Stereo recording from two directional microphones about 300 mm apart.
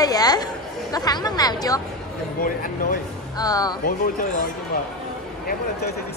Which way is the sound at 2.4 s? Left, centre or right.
Left.